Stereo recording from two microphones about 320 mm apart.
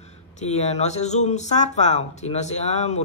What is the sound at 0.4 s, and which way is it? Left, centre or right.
Speech, left.